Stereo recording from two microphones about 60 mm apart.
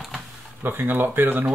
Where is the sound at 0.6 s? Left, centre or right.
Right.